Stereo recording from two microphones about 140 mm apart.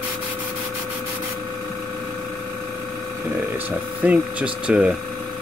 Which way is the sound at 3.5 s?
10° right (ahead or behind).